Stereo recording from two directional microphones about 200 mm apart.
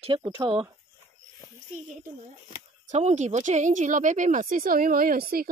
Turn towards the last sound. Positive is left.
turn(degrees=-45)  # may be behind; listen again after turning